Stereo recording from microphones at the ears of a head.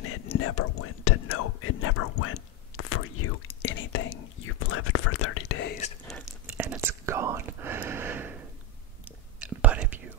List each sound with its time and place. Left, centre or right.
0.0 s whispering: left
6.4 s whispering: right
9.5 s whispering: right